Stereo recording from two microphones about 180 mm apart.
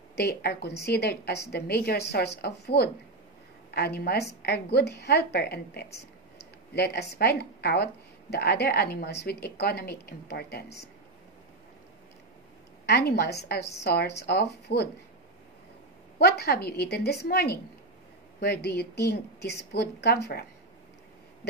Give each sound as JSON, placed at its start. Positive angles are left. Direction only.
{"t": 0.1, "sound": "speech", "side_deg": 65}
{"t": 12.8, "sound": "speech", "side_deg": 65}
{"t": 16.2, "sound": "speech", "side_deg": 65}